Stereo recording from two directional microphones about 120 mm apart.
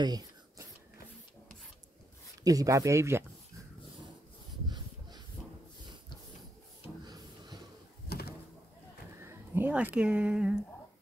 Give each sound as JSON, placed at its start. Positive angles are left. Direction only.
{"t": 0.0, "sound": "whispering", "side_deg": -35}
{"t": 2.4, "sound": "speech", "side_deg": -30}
{"t": 4.6, "sound": "a sound", "side_deg": -35}
{"t": 9.2, "sound": "speech", "side_deg": -20}